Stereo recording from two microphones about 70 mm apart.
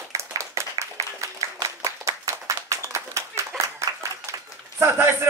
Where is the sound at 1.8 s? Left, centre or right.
Right.